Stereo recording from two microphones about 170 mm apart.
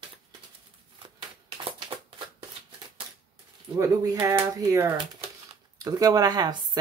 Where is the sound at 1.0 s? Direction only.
30° right (ahead or behind).